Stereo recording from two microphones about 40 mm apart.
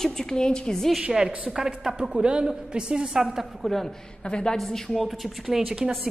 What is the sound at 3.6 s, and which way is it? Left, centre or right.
Speech, centre.